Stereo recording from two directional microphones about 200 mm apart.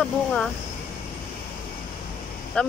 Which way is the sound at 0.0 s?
5° left (ahead or behind).